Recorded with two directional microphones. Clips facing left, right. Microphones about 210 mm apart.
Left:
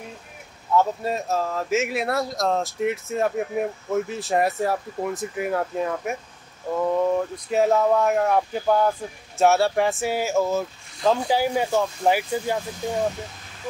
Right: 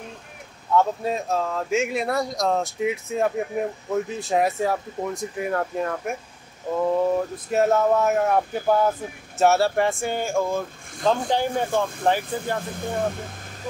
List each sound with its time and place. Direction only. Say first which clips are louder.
0.7 s speech: even; centre (ahead or behind)
12.7 s speech: left 1 dB; 55° right (ahead or behind)